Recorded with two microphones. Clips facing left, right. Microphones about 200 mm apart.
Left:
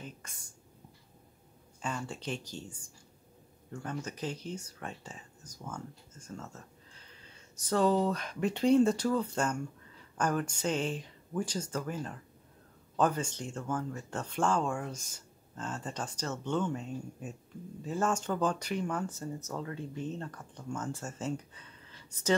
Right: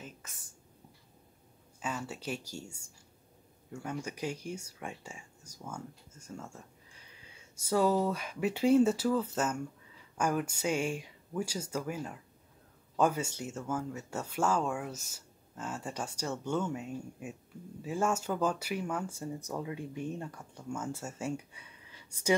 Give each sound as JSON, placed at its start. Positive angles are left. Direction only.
{"t": 1.8, "sound": "speech", "side_deg": -5}